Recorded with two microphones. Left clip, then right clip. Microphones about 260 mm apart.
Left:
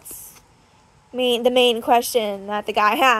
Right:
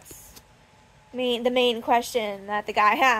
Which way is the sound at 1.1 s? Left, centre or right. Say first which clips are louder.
Left 6 dB; left.